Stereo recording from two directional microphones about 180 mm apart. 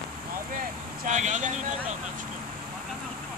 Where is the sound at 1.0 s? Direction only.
40° right (ahead or behind).